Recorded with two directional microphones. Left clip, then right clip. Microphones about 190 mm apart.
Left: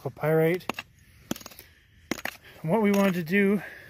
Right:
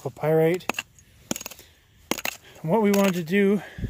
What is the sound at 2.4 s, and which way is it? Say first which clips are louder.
Speech: right 3 dB; 15° right (ahead or behind).